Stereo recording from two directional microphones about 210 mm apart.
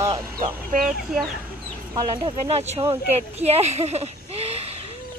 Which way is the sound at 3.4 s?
30° right (ahead or behind).